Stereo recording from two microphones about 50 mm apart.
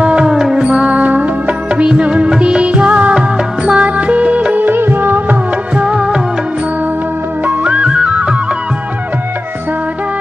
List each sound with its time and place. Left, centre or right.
0.0 s music: centre
1.8 s music: right
4.6 s music: right
5.8 s music of bollywood: centre
7.4 s music: right